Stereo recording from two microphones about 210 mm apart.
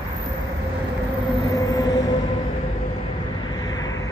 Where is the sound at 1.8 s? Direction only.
15° left (ahead or behind).